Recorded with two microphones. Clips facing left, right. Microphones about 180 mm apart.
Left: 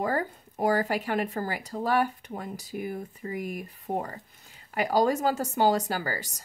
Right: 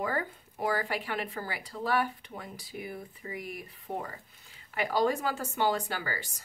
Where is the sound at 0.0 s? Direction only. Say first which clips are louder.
Left 4 dB; 40° left (ahead or behind).